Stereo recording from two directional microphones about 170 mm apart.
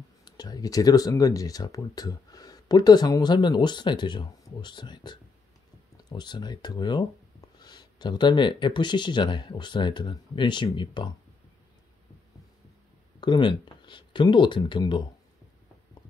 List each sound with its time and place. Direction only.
0.2 s speech: 25° left (ahead or behind)
13.2 s speech: 25° left (ahead or behind)